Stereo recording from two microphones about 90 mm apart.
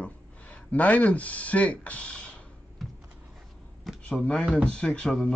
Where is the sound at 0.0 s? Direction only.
15° left (ahead or behind).